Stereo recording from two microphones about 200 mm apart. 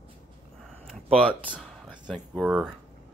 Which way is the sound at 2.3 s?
Centre (ahead or behind).